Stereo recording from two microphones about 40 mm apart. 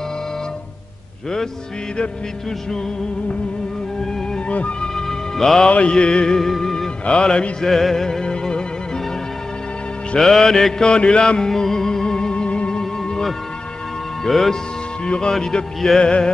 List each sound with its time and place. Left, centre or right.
4.5 s music: left
4.9 s music: centre
5.7 s music: left
7.1 s music: left
7.6 s music: centre
10.1 s mantra: centre
10.9 s music: left
14.2 s mantra: centre
15.0 s music: left
15.5 s mantra: centre
16.0 s music: left